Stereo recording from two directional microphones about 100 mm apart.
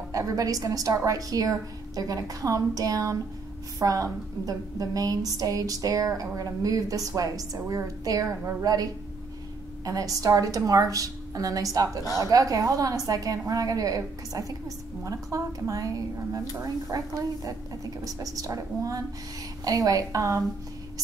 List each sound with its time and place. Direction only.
0.1 s a woman's voice: 35° right (ahead or behind)
9.8 s a woman's voice: 35° right (ahead or behind)